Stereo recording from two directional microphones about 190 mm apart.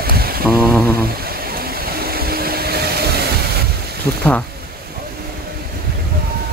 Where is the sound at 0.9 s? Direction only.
55° right (ahead or behind).